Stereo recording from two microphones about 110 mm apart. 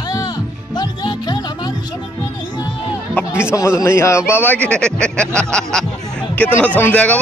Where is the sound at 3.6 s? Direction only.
25° left (ahead or behind).